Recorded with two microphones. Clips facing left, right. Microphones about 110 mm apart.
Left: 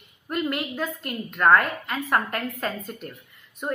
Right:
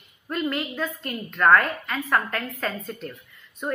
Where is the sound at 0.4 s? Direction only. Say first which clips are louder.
Even; 15° left (ahead or behind).